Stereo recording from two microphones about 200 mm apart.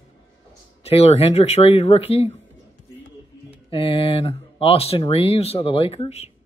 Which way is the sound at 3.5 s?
30° left (ahead or behind).